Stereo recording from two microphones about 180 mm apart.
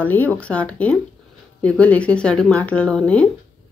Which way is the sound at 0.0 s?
10° left (ahead or behind).